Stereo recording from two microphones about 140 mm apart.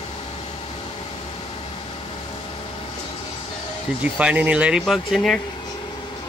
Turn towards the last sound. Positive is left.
turn(degrees=0)  # may be behind; listen again after turning